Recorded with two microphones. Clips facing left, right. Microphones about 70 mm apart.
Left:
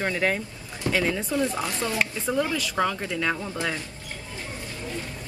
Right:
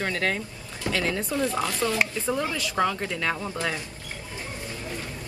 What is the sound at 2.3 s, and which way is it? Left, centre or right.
Speech, centre.